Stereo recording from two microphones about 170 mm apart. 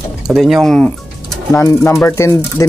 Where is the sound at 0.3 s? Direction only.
Centre (ahead or behind).